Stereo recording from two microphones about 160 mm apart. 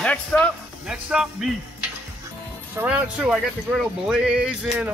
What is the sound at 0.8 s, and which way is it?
Speech, 5° right (ahead or behind).